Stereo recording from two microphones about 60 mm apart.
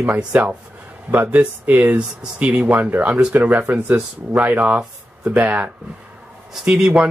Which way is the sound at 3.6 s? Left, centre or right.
Right.